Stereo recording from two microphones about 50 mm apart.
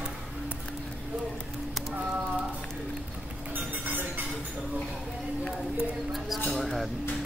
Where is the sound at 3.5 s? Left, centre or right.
Right.